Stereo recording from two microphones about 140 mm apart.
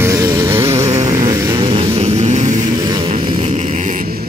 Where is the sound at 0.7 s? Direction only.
50° right (ahead or behind).